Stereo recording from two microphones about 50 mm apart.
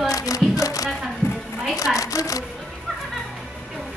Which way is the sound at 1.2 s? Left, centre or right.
Left.